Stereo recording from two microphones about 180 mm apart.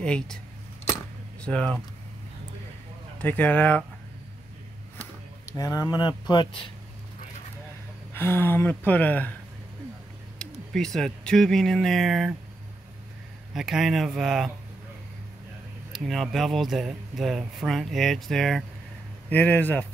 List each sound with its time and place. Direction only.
0.0 s speech: 5° left (ahead or behind)
1.4 s speech: 5° left (ahead or behind)
3.2 s speech: 10° left (ahead or behind)
5.5 s speech: 20° left (ahead or behind)
8.1 s speech: 10° left (ahead or behind)
10.7 s speech: 5° left (ahead or behind)
13.5 s speech: centre (ahead or behind)
15.9 s speech: centre (ahead or behind)